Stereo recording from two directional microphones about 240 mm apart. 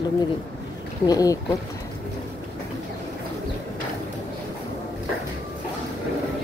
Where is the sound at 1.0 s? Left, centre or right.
Centre.